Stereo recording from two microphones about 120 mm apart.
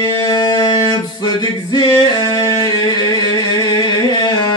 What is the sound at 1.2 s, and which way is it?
Music, 40° left (ahead or behind).